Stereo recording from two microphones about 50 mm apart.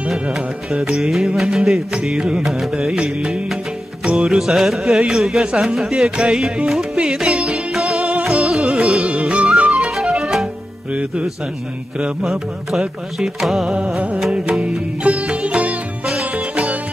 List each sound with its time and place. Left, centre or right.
0.1 s music: centre
2.1 s music: centre
2.8 s music: centre
4.1 s music: centre
10.9 s music: right
12.3 s music: centre
15.2 s music: right
16.1 s music: centre